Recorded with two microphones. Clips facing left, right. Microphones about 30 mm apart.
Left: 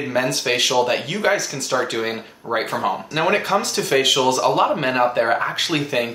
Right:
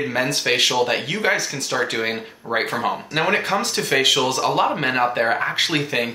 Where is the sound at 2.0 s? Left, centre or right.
Centre.